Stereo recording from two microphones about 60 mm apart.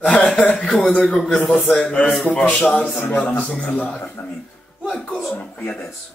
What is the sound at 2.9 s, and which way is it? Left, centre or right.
Speech, left.